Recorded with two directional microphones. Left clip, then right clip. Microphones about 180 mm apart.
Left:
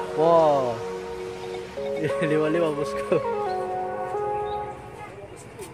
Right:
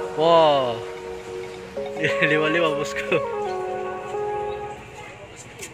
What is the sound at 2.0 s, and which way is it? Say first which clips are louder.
Speech: right 4 dB; 10° left (ahead or behind).